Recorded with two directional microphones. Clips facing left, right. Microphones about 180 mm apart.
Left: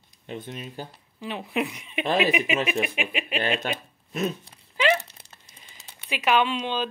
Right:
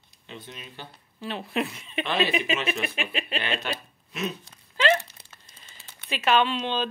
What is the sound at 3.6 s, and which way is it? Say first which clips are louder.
Speech: left 2 dB; 45° left (ahead or behind).